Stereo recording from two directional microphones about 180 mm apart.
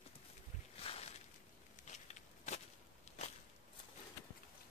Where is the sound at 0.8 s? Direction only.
35° left (ahead or behind).